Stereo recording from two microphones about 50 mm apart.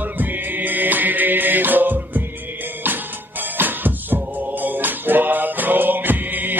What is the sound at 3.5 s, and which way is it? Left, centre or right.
Music, right.